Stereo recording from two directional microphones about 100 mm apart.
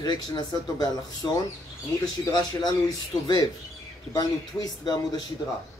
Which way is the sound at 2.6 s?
40° left (ahead or behind).